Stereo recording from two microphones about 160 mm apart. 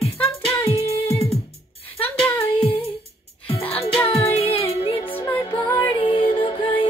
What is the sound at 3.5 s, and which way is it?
Music, 35° left (ahead or behind).